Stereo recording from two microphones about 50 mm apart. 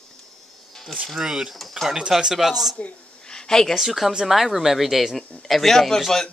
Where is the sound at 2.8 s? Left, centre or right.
Left.